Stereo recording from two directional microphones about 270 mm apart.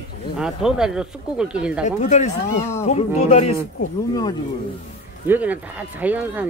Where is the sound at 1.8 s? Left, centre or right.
Left.